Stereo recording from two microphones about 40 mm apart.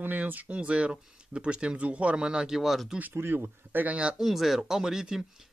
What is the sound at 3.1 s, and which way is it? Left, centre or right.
Speech, right.